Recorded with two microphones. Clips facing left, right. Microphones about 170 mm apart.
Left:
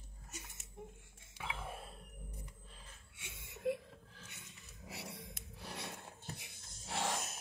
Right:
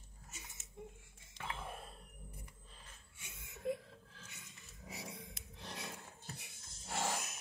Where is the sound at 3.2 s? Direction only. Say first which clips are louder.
Left 4 dB; 70° left (ahead or behind).